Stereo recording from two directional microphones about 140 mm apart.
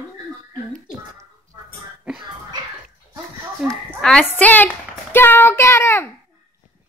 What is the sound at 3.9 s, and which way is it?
A woman's voice, 5° left (ahead or behind).